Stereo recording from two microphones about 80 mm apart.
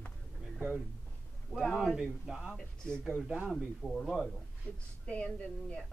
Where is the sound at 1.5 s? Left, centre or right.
Centre.